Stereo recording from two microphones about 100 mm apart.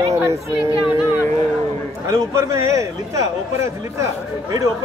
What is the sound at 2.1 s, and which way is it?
Speech, 30° right (ahead or behind).